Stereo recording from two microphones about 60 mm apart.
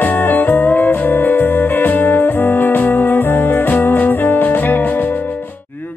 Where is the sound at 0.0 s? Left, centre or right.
Left.